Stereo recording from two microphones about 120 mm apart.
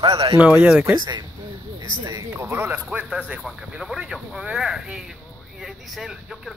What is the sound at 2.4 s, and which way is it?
Speech, 20° right (ahead or behind).